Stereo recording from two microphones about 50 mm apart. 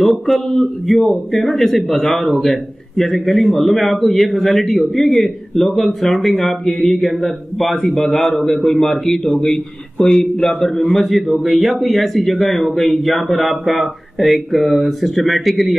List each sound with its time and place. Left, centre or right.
0.0 s a man's voice: centre
11.0 s a man's voice: centre